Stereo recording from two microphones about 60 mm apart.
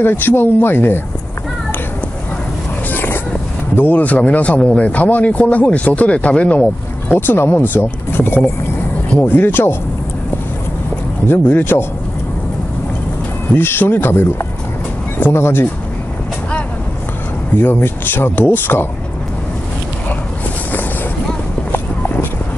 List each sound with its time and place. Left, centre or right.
0.0 s speech: left
2.9 s boat: left
3.7 s speech: left
7.1 s speech: left
11.2 s speech: left
13.6 s speech: left
17.6 s speech: left